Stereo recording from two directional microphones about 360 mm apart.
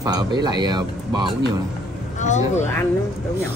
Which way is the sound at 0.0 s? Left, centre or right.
Centre.